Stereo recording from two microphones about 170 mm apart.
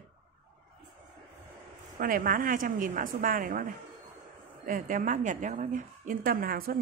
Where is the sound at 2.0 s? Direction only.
55° right (ahead or behind).